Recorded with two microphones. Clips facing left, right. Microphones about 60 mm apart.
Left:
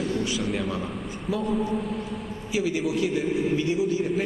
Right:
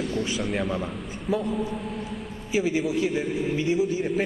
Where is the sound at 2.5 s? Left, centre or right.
Right.